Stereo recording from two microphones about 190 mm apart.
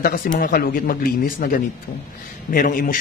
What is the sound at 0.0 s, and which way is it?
A man's voice, 50° left (ahead or behind).